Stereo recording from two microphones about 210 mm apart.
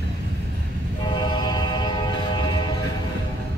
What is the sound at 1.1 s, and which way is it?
Train, 20° left (ahead or behind).